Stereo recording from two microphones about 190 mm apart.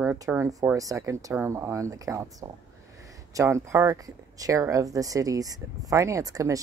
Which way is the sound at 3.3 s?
15° right (ahead or behind).